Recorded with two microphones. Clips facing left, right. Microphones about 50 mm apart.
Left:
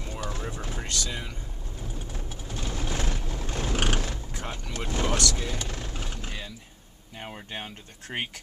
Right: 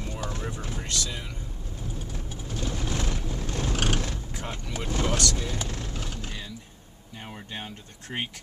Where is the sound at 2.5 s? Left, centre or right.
Centre.